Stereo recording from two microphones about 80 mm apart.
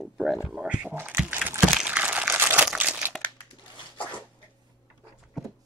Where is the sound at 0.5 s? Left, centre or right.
Centre.